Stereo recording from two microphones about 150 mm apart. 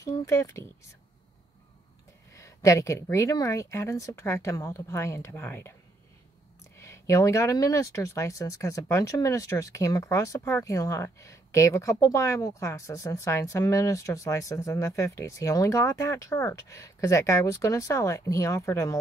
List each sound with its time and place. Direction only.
0.2 s speech: 20° left (ahead or behind)
2.3 s speech: 20° left (ahead or behind)
6.8 s speech: 20° left (ahead or behind)